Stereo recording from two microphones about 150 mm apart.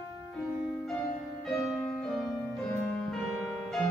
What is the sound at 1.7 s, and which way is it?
Music, centre (ahead or behind).